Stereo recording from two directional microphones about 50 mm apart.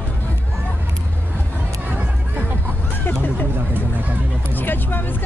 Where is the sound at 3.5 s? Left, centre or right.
Right.